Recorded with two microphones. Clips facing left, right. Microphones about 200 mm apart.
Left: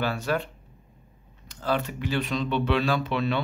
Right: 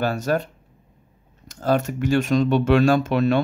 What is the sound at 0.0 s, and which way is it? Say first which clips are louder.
Speech: right 5 dB; 45° right (ahead or behind).